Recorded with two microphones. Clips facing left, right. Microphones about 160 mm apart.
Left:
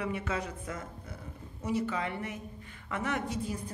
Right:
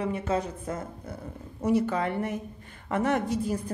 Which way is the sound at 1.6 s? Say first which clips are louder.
Right 7 dB; 50° right (ahead or behind).